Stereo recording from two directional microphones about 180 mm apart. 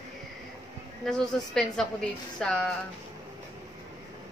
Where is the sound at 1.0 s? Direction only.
5° left (ahead or behind).